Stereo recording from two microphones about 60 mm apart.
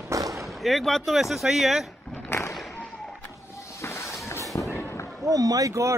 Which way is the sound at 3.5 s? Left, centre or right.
Left.